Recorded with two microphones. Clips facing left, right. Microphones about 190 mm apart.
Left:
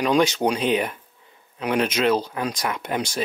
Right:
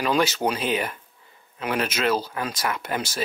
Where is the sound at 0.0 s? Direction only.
5° right (ahead or behind).